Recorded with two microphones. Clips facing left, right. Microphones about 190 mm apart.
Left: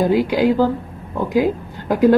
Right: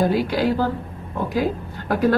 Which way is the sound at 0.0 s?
15° left (ahead or behind).